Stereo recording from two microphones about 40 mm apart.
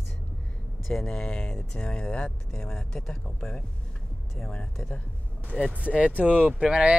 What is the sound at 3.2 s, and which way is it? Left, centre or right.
Speech, left.